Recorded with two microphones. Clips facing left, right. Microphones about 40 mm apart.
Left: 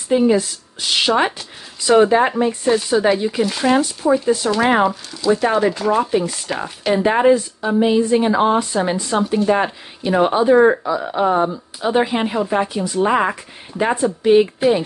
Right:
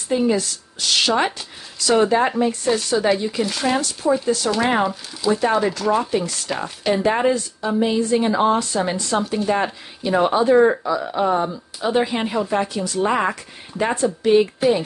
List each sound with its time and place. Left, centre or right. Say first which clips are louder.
0.2 s speech: left 4 dB; centre